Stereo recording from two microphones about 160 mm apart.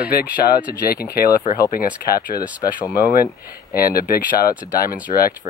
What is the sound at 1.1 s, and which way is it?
Speech, 70° left (ahead or behind).